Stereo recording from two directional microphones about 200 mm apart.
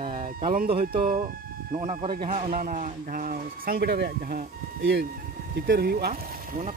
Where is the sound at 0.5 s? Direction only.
45° right (ahead or behind).